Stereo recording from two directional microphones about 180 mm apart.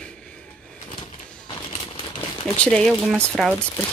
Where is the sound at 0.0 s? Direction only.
5° left (ahead or behind).